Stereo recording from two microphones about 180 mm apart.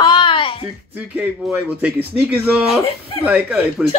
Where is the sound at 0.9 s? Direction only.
10° right (ahead or behind).